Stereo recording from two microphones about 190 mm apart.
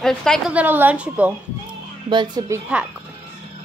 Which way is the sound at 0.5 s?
10° right (ahead or behind).